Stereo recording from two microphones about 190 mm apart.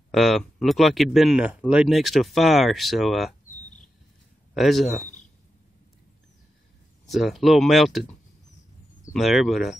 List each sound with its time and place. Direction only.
0.1 s speech: centre (ahead or behind)
4.6 s speech: centre (ahead or behind)
7.1 s speech: centre (ahead or behind)
9.1 s speech: centre (ahead or behind)